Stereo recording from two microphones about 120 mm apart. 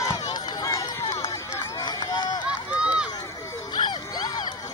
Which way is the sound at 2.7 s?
10° right (ahead or behind).